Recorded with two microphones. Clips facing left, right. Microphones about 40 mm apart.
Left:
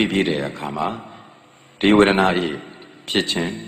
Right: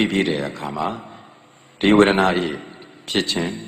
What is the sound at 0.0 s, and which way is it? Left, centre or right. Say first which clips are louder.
Speech: even; left.